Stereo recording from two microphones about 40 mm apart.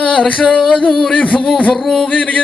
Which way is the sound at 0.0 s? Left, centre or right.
Left.